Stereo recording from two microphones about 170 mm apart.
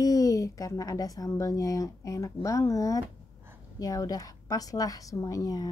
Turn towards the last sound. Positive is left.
turn(degrees=20)  # may be behind; listen again after turning